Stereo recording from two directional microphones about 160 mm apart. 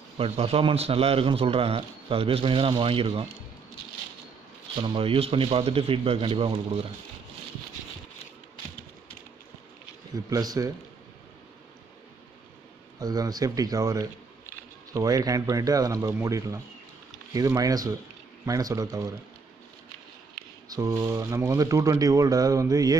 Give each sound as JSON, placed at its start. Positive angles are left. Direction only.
{"t": 0.2, "sound": "speech", "side_deg": -35}
{"t": 4.7, "sound": "speech", "side_deg": -30}
{"t": 10.1, "sound": "speech", "side_deg": -25}
{"t": 13.0, "sound": "speech", "side_deg": -25}
{"t": 20.7, "sound": "speech", "side_deg": -20}